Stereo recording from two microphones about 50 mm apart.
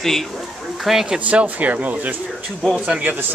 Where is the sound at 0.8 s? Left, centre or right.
Centre.